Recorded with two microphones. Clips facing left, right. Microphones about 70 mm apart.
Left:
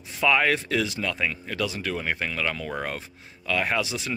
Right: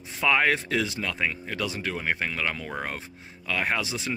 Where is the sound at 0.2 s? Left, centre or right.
Right.